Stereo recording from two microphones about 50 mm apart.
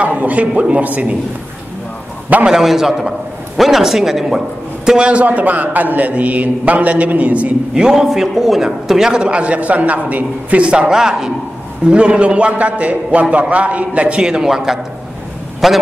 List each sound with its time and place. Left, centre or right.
0.0 s a man's voice: right
2.5 s a man's voice: centre; by 7.5 s right
7.7 s a man's voice: centre
11.9 s a man's voice: right
14.2 s a man's voice: centre